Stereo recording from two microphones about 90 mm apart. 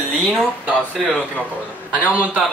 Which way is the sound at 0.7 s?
15° right (ahead or behind).